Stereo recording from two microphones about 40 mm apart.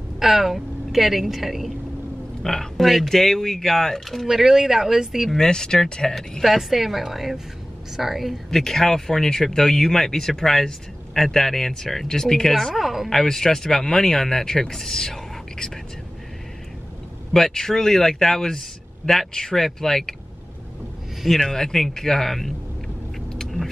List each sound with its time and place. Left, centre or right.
0.2 s a woman's voice: centre
2.4 s speech: centre
4.3 s speech: centre
5.4 s speech: centre
6.4 s a woman's voice: centre
8.5 s speech: centre
12.5 s a woman's voice: centre
13.1 s speech: centre
17.3 s speech: centre
21.4 s speech: centre
23.3 s car: centre